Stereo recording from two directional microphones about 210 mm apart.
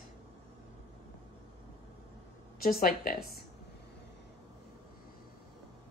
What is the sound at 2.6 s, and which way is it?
Speech, 40° left (ahead or behind).